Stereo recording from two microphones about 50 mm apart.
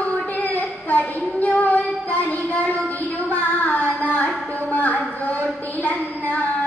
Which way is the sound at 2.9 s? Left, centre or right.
Left.